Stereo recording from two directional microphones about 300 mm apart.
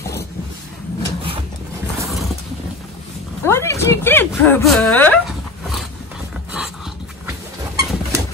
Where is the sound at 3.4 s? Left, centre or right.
Centre.